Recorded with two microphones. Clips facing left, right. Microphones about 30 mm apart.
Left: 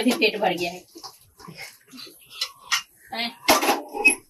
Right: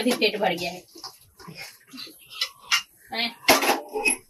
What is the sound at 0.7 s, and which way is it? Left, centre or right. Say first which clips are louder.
Bathtub: even; centre.